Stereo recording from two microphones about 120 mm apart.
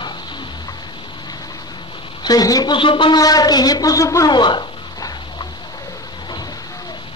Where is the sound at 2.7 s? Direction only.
45° left (ahead or behind).